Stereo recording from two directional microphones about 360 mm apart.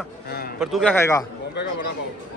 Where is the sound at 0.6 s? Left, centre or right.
Centre.